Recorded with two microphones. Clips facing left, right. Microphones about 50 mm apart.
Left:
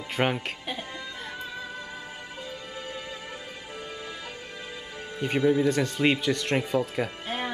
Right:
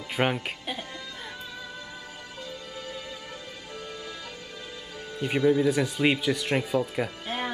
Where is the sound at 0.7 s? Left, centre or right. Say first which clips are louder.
Left 1 dB; centre.